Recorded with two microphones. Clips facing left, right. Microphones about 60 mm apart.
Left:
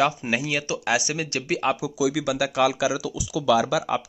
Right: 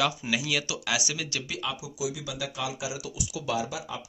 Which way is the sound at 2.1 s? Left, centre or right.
Left.